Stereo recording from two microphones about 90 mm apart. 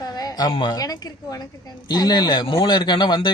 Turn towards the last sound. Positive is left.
turn(degrees=55)  # may be behind; listen again after turning